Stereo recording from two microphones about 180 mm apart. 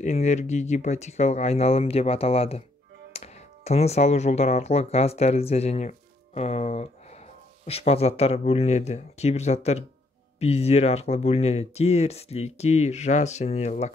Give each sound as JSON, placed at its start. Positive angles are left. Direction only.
{"t": 0.0, "sound": "speech", "side_deg": 40}